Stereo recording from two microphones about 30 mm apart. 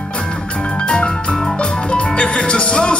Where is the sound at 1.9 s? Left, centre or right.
Left.